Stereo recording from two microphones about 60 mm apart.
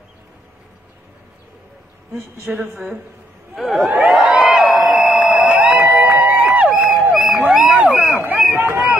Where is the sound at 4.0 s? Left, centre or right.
Centre.